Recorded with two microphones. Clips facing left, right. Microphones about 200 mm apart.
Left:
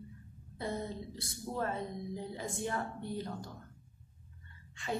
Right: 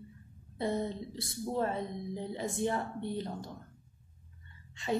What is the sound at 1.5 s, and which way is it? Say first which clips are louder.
Speech: right 3 dB; 20° right (ahead or behind).